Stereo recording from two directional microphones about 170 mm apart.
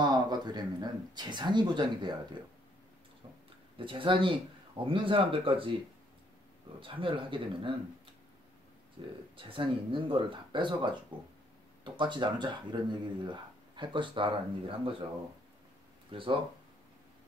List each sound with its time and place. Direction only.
0.0 s speech: 25° right (ahead or behind)
3.7 s speech: 30° right (ahead or behind)
6.8 s speech: 30° right (ahead or behind)
9.0 s speech: 30° right (ahead or behind)
16.1 s speech: 30° right (ahead or behind)